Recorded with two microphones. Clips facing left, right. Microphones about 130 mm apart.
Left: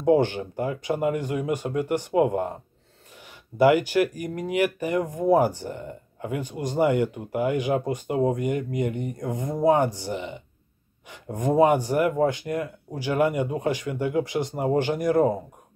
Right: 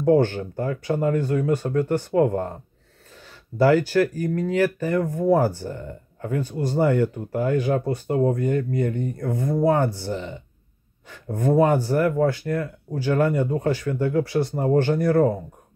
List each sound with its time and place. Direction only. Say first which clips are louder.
0.0 s speech: right 2 dB; 15° left (ahead or behind)
3.5 s speech: right 1 dB; 15° left (ahead or behind)